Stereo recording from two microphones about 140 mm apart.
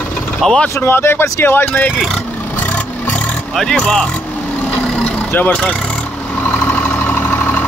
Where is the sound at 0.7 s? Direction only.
15° left (ahead or behind).